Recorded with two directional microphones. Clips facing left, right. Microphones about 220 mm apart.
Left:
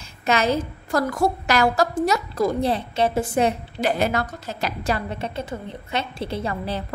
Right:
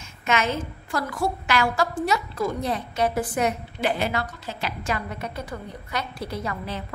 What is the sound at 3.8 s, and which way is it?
A woman's voice, 40° left (ahead or behind).